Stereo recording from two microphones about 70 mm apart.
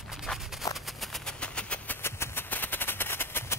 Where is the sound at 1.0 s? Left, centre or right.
Centre.